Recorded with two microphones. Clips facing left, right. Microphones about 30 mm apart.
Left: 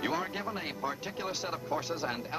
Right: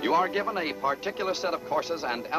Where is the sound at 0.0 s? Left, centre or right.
Right.